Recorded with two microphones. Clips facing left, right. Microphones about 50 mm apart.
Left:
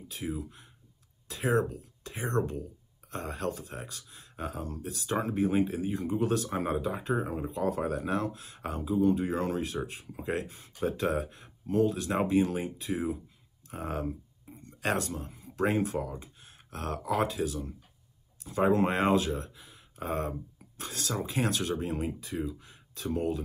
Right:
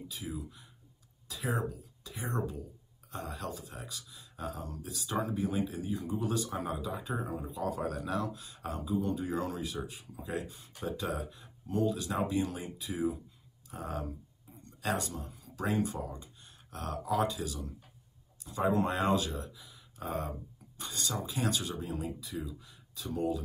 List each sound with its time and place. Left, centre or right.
0.1 s speech: left
21.1 s speech: left